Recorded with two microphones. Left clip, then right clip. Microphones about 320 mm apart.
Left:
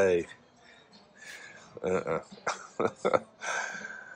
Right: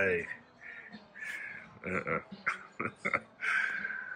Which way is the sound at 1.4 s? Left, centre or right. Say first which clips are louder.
Left 6 dB; centre.